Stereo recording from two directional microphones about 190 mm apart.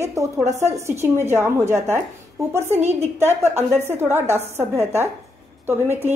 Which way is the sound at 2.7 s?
35° right (ahead or behind).